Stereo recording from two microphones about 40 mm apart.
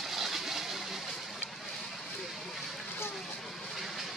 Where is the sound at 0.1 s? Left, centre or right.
Centre.